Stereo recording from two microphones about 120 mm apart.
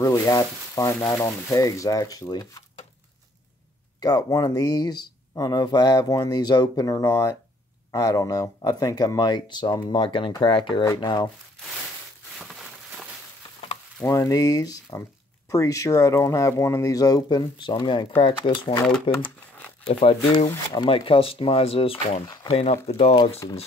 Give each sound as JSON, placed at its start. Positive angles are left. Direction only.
{"t": 0.1, "sound": "speech", "side_deg": 25}
{"t": 4.0, "sound": "speech", "side_deg": 30}
{"t": 12.4, "sound": "a sound", "side_deg": 0}
{"t": 14.0, "sound": "speech", "side_deg": 25}
{"t": 23.4, "sound": "speech", "side_deg": 40}